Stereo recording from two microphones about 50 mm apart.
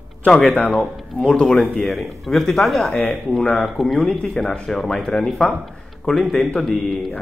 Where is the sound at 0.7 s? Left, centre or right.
Centre.